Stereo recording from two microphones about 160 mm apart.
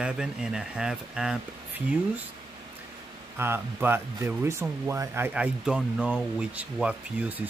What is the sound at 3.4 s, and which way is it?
Speech, 15° right (ahead or behind).